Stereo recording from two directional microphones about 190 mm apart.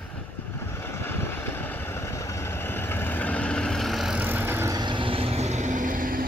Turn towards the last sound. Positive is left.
turn(degrees=-45)  # may be behind; listen again after turning